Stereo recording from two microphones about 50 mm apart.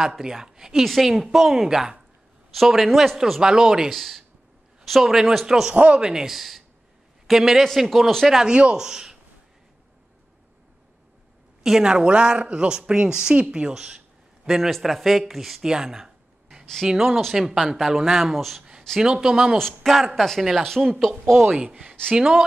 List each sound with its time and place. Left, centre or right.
0.2 s speech: centre
3.9 s speech: centre
8.5 s speech: centre
11.6 s speech: centre
15.7 s a sound: centre
16.8 s speech: centre
18.9 s speech: centre
19.5 s speech: centre
22.1 s speech: centre